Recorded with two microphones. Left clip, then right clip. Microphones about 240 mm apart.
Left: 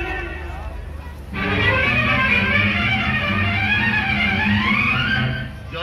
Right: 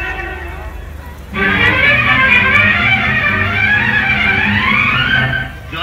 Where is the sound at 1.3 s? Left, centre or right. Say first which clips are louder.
Right 7 dB; right.